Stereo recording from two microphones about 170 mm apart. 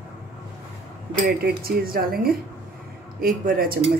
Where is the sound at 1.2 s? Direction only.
60° right (ahead or behind).